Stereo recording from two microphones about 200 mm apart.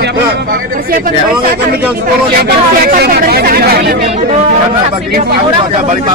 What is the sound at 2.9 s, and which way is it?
Speech, 45° right (ahead or behind).